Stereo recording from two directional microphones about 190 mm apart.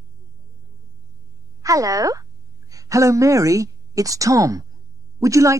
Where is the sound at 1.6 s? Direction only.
15° right (ahead or behind).